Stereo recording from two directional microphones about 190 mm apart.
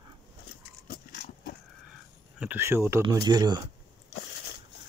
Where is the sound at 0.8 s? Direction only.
50° left (ahead or behind).